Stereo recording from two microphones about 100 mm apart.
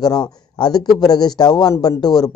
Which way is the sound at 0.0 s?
45° left (ahead or behind).